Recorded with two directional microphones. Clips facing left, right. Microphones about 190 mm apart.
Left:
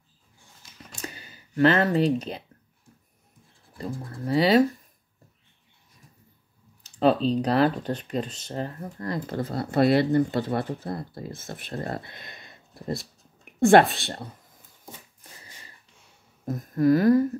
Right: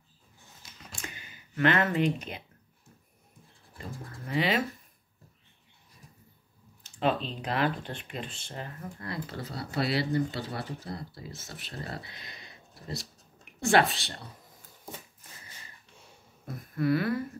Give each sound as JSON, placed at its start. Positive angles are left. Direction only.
{"t": 1.0, "sound": "a sound", "side_deg": 35}
{"t": 3.7, "sound": "speech", "side_deg": 35}
{"t": 6.8, "sound": "a woman's voice", "side_deg": 35}
{"t": 16.4, "sound": "speech", "side_deg": 40}